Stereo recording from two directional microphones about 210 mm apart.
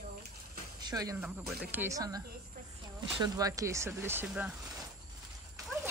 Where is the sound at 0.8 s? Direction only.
20° right (ahead or behind).